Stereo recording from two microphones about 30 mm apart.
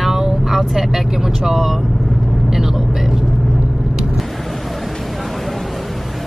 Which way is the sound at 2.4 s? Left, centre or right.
Centre.